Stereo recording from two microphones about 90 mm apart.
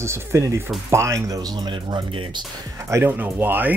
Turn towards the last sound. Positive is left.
turn(degrees=-20)  # may be behind; listen again after turning